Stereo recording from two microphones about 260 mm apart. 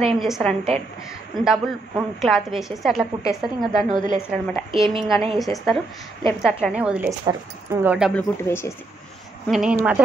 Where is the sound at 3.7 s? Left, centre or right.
Centre.